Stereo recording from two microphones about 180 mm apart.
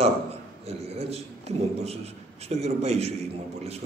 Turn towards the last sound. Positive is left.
turn(degrees=-35)  # may be behind; listen again after turning